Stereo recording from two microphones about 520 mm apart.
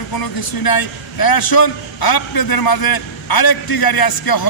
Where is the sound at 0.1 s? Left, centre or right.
Left.